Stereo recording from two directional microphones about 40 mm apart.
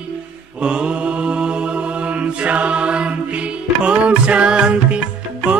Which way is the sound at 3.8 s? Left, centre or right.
Right.